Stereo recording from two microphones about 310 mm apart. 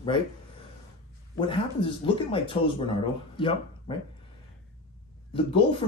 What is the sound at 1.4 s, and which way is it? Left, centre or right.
A man's voice, centre.